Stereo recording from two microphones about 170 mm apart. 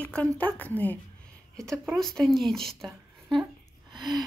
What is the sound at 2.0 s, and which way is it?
Speech, 5° left (ahead or behind).